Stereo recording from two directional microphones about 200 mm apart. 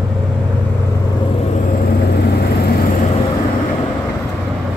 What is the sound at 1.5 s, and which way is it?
Vehicle, 50° left (ahead or behind).